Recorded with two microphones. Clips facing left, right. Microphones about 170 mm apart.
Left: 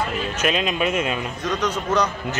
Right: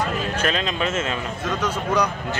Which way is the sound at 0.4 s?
10° left (ahead or behind).